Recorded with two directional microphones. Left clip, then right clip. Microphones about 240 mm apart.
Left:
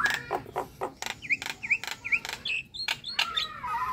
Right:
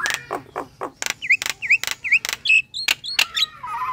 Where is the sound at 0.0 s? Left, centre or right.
Centre.